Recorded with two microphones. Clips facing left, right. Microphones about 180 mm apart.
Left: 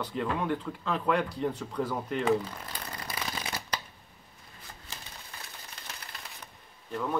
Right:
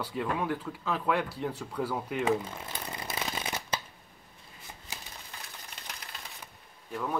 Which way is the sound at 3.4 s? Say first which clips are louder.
Right 1 dB; 25° right (ahead or behind).